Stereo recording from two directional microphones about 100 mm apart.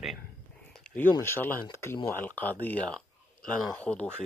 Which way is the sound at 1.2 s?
25° left (ahead or behind).